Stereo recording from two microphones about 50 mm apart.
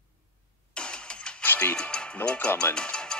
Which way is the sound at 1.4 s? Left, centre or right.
Left.